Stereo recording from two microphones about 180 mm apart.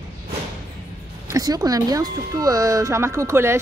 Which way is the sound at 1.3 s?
20° right (ahead or behind).